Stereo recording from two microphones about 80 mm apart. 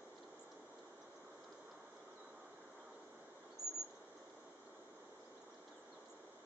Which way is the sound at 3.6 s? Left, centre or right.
Right.